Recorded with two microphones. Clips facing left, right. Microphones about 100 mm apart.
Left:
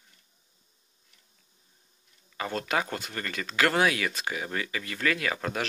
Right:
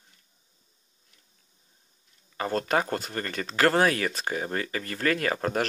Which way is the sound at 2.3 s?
40° right (ahead or behind).